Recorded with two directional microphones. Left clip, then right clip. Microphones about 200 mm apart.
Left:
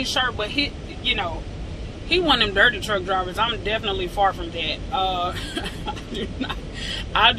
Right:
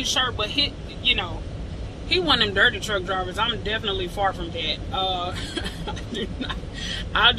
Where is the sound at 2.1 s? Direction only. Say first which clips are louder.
Left 1 dB; 20° right (ahead or behind).